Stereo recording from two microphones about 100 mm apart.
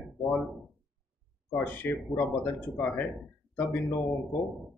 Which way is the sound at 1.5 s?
15° left (ahead or behind).